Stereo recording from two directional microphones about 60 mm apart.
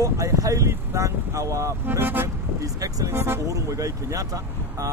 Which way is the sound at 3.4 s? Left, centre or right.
Right.